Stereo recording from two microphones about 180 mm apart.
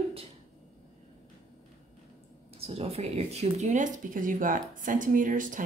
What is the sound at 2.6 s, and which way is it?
Speech, 35° right (ahead or behind).